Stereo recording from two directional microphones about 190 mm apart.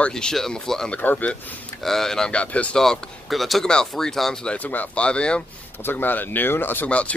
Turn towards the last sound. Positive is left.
turn(degrees=5)  # may be behind; listen again after turning